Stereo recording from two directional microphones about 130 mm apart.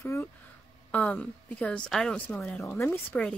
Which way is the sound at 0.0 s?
15° left (ahead or behind).